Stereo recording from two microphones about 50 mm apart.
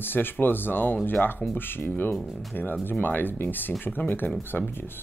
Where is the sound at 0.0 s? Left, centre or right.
Left.